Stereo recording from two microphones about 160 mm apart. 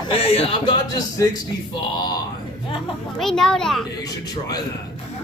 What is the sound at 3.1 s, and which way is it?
Speech, centre (ahead or behind).